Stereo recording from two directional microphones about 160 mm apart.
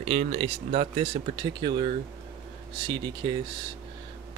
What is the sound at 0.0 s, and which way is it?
Speech, 40° right (ahead or behind).